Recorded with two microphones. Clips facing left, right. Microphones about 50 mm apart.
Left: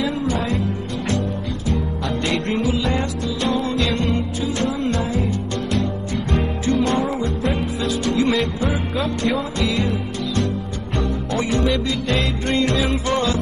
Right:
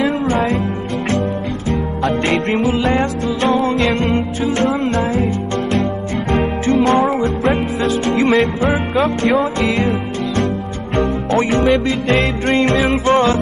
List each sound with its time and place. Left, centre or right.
0.0 s music: right
1.7 s music: right